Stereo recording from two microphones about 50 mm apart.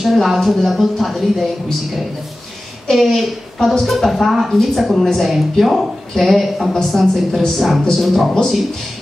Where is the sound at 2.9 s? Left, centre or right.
Centre.